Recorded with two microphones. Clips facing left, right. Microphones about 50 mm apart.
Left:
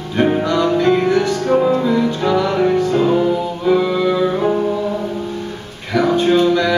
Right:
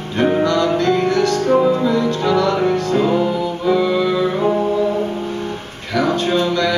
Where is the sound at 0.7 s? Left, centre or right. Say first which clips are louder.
Left 2 dB; centre.